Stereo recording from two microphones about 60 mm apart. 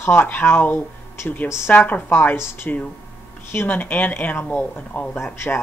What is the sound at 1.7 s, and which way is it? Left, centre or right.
A woman's voice, left.